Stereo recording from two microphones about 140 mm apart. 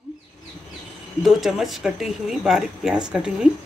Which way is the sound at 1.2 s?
Centre (ahead or behind).